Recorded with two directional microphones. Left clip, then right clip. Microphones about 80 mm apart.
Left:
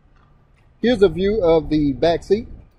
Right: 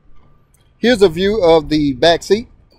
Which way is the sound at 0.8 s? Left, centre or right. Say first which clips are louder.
Right 4 dB; centre.